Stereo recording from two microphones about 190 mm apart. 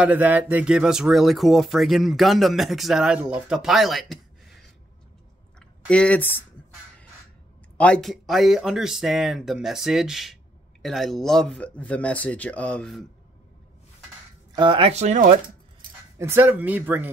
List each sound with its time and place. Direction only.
0.0 s speech: 10° right (ahead or behind); by 6.4 s 10° left (ahead or behind)
7.7 s speech: 5° left (ahead or behind)
14.5 s speech: 25° right (ahead or behind); by 15.4 s 45° right (ahead or behind)
16.2 s speech: 10° right (ahead or behind)